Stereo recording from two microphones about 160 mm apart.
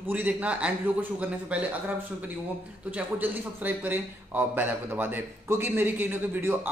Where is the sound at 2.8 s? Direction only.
10° right (ahead or behind).